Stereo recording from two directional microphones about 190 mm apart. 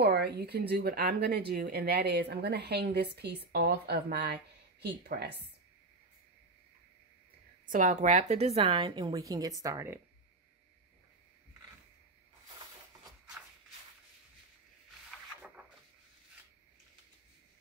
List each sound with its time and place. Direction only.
0.0 s speech: 60° right (ahead or behind)
7.6 s a woman's voice: 45° right (ahead or behind); by 9.9 s 15° right (ahead or behind)
15.0 s rub: 5° right (ahead or behind)